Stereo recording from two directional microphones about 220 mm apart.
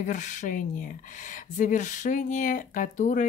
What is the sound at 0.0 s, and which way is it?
Speech, 35° left (ahead or behind).